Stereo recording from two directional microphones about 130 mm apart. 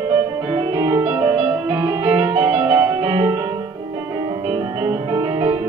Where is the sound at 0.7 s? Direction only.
30° right (ahead or behind).